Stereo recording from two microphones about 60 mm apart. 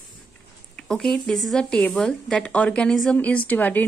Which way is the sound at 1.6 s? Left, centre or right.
Centre.